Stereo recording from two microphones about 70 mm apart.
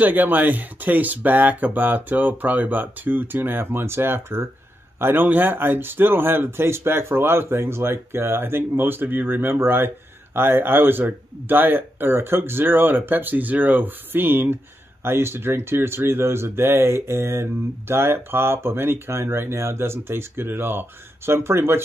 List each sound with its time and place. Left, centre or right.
0.0 s speech: right